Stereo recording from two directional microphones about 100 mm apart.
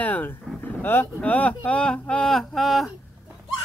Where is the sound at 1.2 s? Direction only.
15° left (ahead or behind).